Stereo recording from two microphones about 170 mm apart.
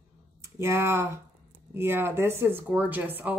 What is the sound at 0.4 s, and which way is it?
A woman's voice, 15° right (ahead or behind).